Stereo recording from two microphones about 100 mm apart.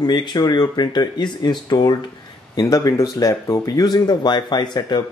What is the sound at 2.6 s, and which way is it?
Speech, 35° left (ahead or behind).